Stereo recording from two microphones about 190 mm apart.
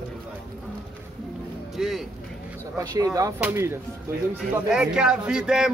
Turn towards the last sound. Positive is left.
turn(degrees=-5)  # may be behind; listen again after turning